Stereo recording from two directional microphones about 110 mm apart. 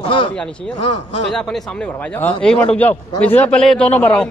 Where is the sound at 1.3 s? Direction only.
5° left (ahead or behind).